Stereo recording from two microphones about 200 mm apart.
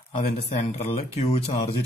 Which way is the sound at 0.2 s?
35° left (ahead or behind).